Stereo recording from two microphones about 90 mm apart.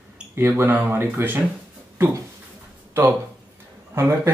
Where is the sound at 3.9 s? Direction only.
35° right (ahead or behind).